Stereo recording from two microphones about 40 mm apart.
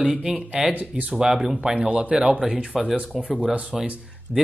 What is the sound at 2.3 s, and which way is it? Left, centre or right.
Speech, right.